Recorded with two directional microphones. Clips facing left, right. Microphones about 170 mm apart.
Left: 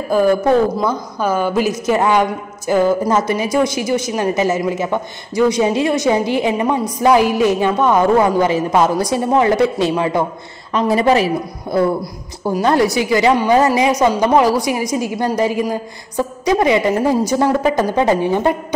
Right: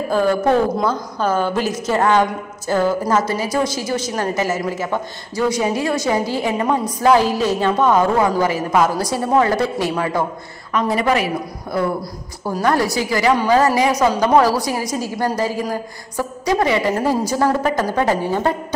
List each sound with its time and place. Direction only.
0.1 s a woman's voice: 10° left (ahead or behind)